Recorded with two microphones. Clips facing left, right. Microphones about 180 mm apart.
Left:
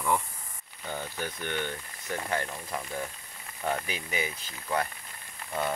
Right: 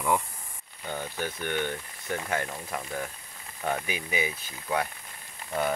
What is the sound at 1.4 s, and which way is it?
Speech, 15° right (ahead or behind).